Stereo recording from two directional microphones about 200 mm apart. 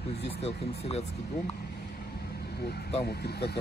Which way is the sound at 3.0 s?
55° left (ahead or behind).